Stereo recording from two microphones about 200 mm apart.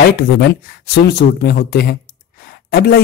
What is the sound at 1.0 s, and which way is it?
Speech, 55° left (ahead or behind).